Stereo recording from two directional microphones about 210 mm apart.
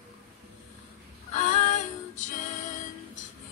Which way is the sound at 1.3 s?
35° left (ahead or behind).